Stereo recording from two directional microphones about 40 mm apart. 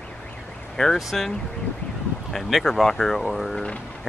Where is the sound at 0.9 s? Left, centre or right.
Centre.